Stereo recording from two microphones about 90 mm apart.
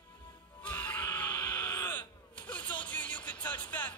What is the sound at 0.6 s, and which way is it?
Screaming, 20° left (ahead or behind).